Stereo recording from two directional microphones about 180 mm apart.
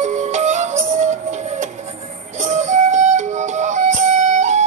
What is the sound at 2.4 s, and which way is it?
Music, 40° right (ahead or behind).